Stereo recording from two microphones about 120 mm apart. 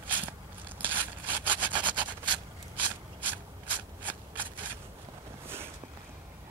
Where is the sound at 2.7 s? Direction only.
15° right (ahead or behind).